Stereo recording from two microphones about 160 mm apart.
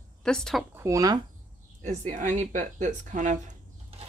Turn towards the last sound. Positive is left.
turn(degrees=-50)  # may be behind; listen again after turning